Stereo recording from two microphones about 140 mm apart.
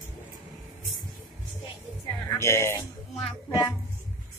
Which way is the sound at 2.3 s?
20° left (ahead or behind).